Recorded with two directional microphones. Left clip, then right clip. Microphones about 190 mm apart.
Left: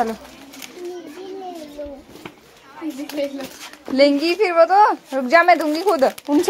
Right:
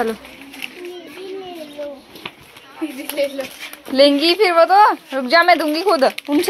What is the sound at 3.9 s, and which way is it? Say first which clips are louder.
Speech: right 3 dB; centre (ahead or behind).